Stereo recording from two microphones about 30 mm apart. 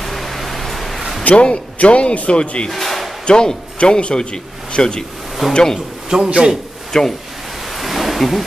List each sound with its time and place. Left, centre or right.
0.0 s a sound: centre
1.3 s speech: left
2.7 s a sound: centre
3.3 s a man's voice: left
5.4 s speech: centre
6.0 s a man's voice: right
6.9 s speech: centre
7.7 s ocean: centre
8.2 s speech: centre